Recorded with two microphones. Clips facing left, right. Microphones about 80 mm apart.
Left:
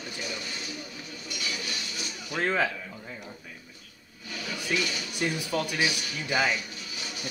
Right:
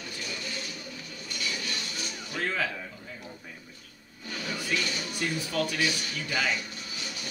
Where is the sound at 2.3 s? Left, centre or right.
Left.